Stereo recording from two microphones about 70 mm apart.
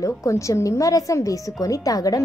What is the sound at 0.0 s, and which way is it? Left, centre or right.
A woman's voice, left.